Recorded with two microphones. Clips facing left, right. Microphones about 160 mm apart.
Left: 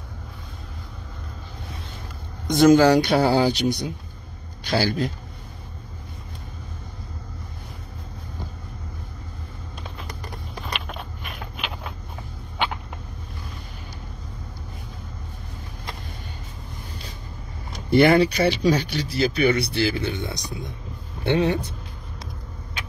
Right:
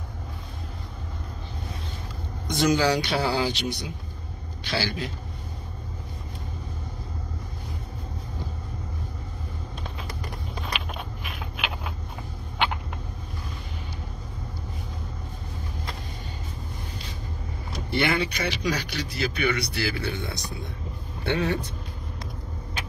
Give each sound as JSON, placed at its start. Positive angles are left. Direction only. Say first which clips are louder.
{"t": 2.4, "sound": "speech", "louder": "left 8 dB", "side_deg": 50}
{"t": 10.6, "sound": "a sound", "louder": "left 1 dB", "side_deg": 0}
{"t": 17.8, "sound": "speech", "louder": "left 9 dB", "side_deg": 40}